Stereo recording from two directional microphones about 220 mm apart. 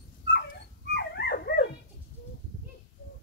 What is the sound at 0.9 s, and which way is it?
Dog, 45° left (ahead or behind).